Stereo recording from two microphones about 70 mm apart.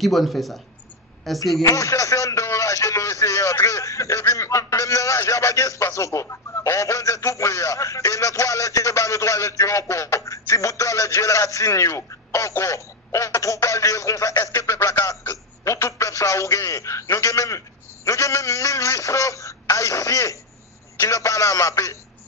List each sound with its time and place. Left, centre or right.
0.0 s speech: centre
1.4 s speech: left
14.3 s a sound: left
14.6 s speech: left